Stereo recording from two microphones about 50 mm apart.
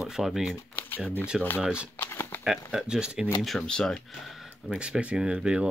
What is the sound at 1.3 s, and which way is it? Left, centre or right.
Speech, centre.